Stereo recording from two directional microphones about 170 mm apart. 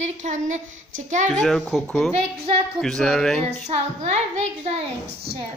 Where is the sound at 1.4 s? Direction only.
Centre (ahead or behind).